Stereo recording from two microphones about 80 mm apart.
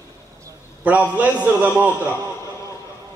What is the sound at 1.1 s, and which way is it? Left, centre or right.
Speech, centre.